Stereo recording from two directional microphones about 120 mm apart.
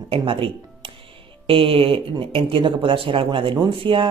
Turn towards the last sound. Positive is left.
turn(degrees=-45)  # may be behind; listen again after turning